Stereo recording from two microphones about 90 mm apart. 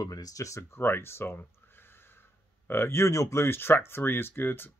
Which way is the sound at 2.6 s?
25° left (ahead or behind).